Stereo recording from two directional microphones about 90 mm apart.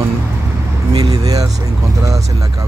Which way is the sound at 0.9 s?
45° right (ahead or behind).